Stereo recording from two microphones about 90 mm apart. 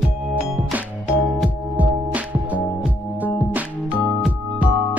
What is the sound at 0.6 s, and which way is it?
Music, 15° right (ahead or behind).